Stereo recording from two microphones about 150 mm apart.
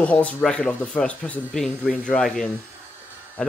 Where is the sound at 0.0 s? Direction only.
10° left (ahead or behind).